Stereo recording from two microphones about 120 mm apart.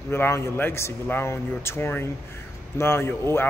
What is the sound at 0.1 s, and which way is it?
Speech, 20° left (ahead or behind).